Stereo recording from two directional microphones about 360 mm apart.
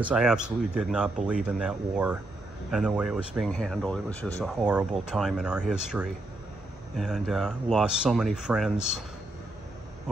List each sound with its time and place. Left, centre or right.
0.0 s speech: centre